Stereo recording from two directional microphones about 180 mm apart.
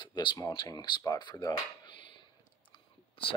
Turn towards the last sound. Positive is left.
turn(degrees=30)  # may be behind; listen again after turning